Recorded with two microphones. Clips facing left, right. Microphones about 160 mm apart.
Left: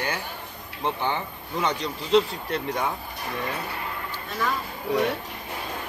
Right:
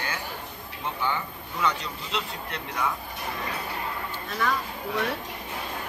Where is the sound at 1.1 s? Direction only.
30° left (ahead or behind).